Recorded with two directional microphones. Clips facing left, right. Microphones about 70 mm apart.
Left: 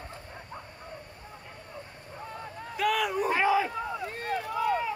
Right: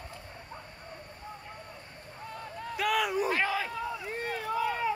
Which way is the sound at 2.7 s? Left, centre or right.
Centre.